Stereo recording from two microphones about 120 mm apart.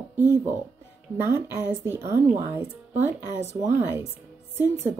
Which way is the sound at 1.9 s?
20° right (ahead or behind).